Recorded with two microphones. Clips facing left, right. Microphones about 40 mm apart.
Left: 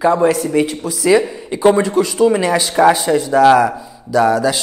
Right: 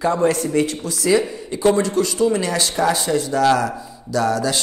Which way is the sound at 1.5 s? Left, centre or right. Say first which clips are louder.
Left 5 dB; centre.